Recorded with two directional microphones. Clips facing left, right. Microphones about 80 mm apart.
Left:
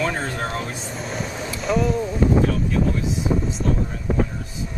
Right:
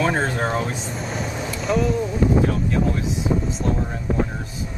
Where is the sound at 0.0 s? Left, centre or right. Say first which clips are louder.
Right 3 dB; right.